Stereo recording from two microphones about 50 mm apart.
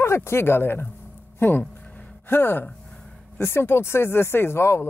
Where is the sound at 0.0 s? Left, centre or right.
Left.